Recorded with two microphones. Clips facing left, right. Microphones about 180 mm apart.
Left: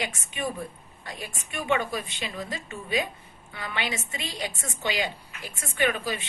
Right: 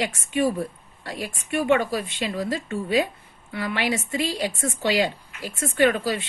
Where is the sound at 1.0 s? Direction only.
75° right (ahead or behind).